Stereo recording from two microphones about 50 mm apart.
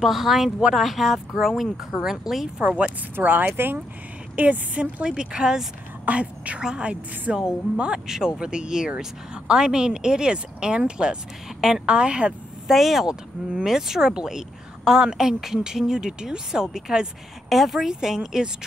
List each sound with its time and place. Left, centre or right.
0.0 s speech: centre
2.6 s a woman's voice: right
3.2 s speech: right
4.4 s speech: right
5.0 s speech: centre
6.0 s a woman's voice: right
12.6 s speech: centre
13.0 s a woman's voice: centre
13.7 s speech: centre